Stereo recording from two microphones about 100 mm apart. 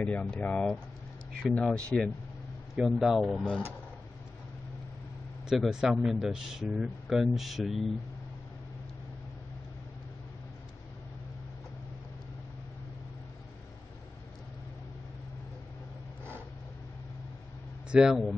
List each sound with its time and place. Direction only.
0.0 s speech: 10° left (ahead or behind)
2.7 s speech: 5° right (ahead or behind)
5.5 s speech: 5° right (ahead or behind)
17.9 s speech: 5° right (ahead or behind)